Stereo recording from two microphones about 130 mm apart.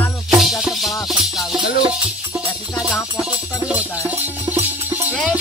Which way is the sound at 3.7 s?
10° right (ahead or behind).